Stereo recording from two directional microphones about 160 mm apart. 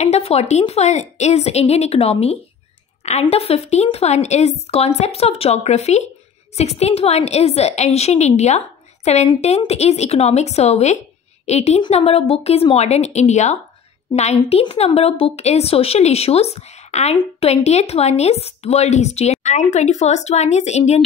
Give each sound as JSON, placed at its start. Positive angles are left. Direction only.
{"t": 0.0, "sound": "a woman's voice", "side_deg": 40}